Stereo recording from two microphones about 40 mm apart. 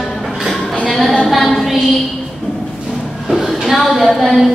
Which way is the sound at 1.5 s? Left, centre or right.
Centre.